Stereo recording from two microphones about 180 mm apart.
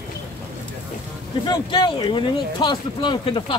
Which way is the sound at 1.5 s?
25° left (ahead or behind).